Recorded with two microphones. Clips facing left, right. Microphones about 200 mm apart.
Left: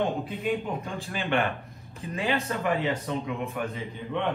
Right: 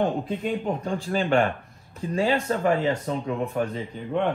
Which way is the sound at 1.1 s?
40° right (ahead or behind).